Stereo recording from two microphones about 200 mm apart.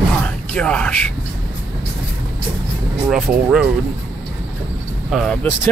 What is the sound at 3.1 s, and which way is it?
Speech, 5° right (ahead or behind).